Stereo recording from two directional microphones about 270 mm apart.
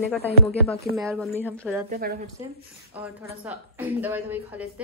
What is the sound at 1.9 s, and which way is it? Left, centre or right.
Speech, right.